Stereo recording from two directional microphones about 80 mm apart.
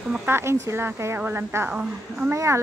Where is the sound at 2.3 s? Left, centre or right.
Right.